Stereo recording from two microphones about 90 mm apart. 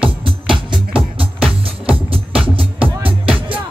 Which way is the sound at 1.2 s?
90° right.